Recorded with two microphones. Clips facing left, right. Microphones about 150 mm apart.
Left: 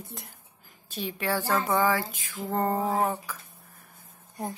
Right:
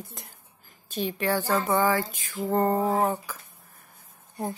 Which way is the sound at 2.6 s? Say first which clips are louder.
Right 1 dB; centre (ahead or behind).